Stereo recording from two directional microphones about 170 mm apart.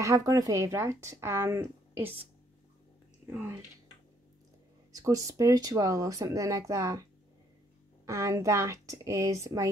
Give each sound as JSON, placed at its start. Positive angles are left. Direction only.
{"t": 0.0, "sound": "speech", "side_deg": -20}
{"t": 3.3, "sound": "speech", "side_deg": -15}
{"t": 4.9, "sound": "speech", "side_deg": -20}
{"t": 8.1, "sound": "speech", "side_deg": -20}